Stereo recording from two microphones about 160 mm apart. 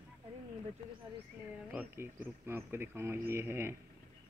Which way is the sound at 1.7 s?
10° right (ahead or behind).